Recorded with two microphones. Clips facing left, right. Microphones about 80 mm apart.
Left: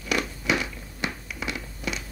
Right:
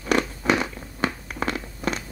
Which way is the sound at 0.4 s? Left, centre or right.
Right.